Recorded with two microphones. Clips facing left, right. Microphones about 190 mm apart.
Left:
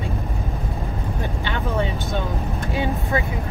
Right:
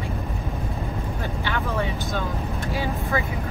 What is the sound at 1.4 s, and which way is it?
Speech, 25° left (ahead or behind).